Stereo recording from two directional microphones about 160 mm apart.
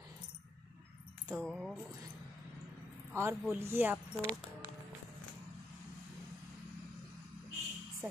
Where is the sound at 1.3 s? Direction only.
Centre (ahead or behind).